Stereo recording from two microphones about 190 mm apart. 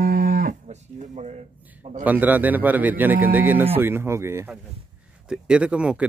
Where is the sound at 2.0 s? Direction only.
10° right (ahead or behind).